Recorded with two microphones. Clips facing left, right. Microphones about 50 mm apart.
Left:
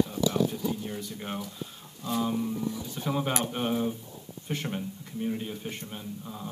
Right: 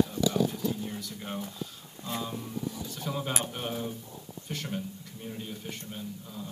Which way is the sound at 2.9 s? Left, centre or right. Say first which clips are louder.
Left 5 dB; left.